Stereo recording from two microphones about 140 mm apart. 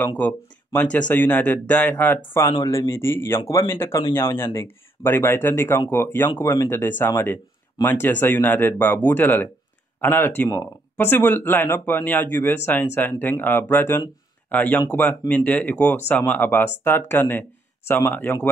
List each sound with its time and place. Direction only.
0.7 s speech: 10° left (ahead or behind)